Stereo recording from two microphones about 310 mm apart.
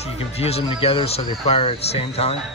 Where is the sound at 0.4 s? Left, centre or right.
Centre.